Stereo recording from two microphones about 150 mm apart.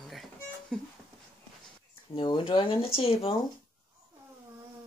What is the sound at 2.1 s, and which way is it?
Speech, 35° left (ahead or behind).